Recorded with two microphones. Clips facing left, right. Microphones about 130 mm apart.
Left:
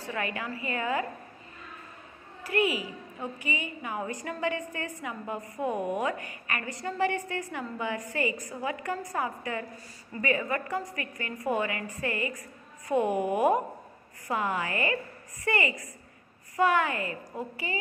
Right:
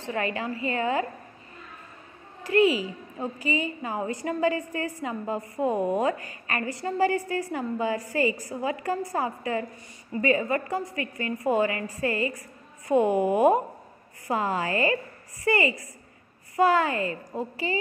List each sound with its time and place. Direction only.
0.0 s a woman's voice: 30° right (ahead or behind)
2.5 s a woman's voice: 30° right (ahead or behind)